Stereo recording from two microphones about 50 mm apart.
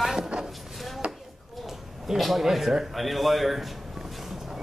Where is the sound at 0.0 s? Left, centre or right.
Centre.